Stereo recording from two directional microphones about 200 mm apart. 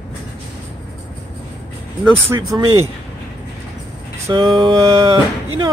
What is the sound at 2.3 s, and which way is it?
Speech, 15° right (ahead or behind).